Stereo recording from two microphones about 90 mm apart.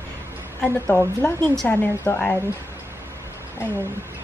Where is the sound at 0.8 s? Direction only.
20° left (ahead or behind).